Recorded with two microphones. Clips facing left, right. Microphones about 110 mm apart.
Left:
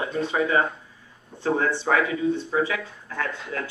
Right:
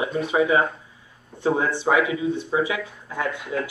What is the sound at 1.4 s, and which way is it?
Speech, 15° right (ahead or behind).